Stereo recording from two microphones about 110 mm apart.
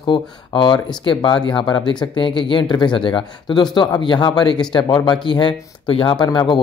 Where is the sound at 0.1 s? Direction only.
45° left (ahead or behind).